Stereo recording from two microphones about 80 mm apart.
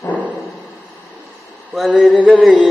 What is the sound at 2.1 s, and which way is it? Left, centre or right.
Carnatic music, centre.